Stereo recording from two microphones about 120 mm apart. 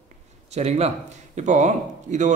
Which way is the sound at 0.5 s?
65° right (ahead or behind).